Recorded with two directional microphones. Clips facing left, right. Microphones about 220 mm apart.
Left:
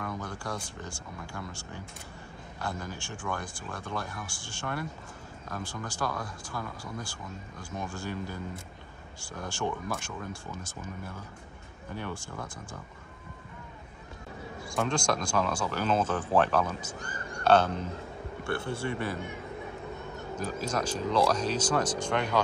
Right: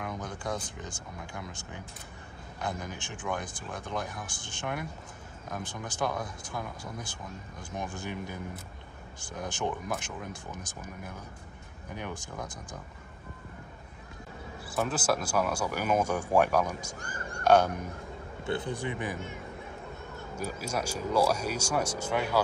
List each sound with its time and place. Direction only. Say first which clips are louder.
0.0 s speech: even; 20° right (ahead or behind)
14.8 s speech: even; 5° right (ahead or behind)
20.3 s speech: left 2 dB; 10° right (ahead or behind)